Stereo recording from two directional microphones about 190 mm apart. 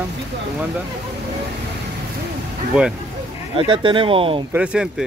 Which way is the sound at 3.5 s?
30° right (ahead or behind).